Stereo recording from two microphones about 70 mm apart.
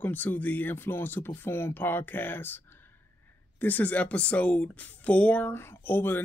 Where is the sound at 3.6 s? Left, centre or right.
Left.